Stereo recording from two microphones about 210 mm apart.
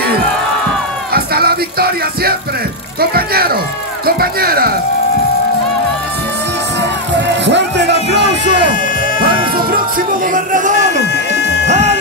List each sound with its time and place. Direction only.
1.1 s music: 45° right (ahead or behind)
3.0 s speech: 45° right (ahead or behind)
7.4 s music: 55° right (ahead or behind)
9.9 s speech: 40° right (ahead or behind)
11.6 s music: 30° right (ahead or behind)